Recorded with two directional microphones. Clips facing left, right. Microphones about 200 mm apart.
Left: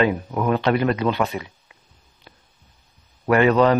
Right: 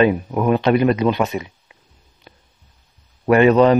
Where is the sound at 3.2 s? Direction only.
20° right (ahead or behind).